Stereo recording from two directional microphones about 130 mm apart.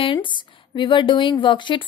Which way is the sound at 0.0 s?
40° left (ahead or behind).